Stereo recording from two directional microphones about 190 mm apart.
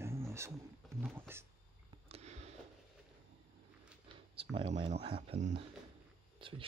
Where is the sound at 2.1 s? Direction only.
35° right (ahead or behind).